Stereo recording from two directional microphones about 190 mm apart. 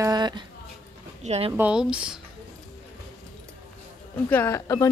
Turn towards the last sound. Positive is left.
turn(degrees=15)  # may be behind; listen again after turning